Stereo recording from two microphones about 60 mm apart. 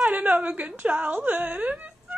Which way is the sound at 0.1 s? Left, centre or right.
Right.